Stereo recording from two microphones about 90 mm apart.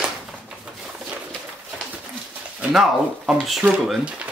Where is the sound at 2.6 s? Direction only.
10° right (ahead or behind).